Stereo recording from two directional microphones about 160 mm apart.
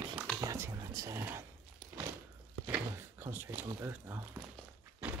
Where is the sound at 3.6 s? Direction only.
15° right (ahead or behind).